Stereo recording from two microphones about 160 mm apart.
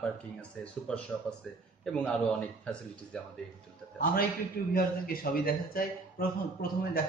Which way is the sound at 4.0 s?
65° left (ahead or behind).